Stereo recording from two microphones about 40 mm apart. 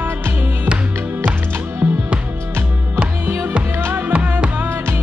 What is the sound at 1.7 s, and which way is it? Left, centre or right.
Music, right.